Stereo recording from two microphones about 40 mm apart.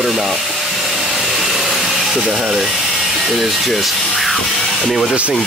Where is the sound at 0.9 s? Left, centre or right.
Centre.